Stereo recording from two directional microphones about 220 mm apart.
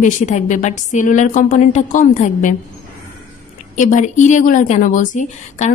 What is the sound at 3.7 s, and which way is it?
A woman's voice, 35° left (ahead or behind).